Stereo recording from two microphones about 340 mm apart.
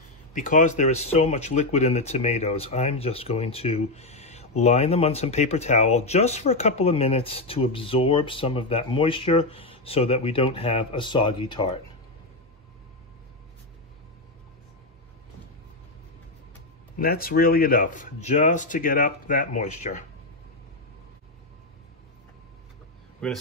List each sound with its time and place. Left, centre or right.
0.3 s speech: left
17.0 s speech: left
23.2 s speech: centre